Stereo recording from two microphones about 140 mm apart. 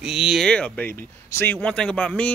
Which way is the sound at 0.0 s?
5° right (ahead or behind).